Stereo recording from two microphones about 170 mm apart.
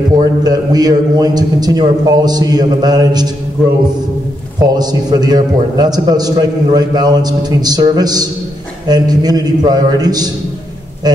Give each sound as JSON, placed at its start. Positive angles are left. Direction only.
{"t": 0.2, "sound": "a man's voice", "side_deg": -25}
{"t": 4.6, "sound": "a man's voice", "side_deg": -25}